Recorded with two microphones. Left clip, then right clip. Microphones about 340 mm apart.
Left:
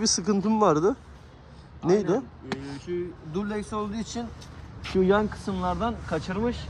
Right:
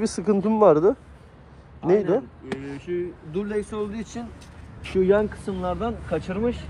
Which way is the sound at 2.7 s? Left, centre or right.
Left.